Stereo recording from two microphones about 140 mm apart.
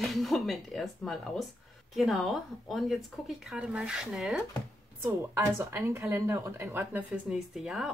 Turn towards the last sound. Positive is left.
turn(degrees=-5)  # may be behind; listen again after turning